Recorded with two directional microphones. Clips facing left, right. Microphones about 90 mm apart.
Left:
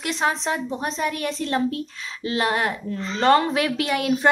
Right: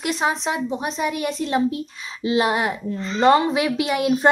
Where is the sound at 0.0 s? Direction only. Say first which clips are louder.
Right 1 dB; 10° right (ahead or behind).